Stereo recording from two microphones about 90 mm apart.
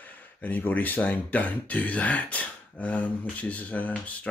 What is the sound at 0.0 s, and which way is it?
A man's voice, 20° left (ahead or behind).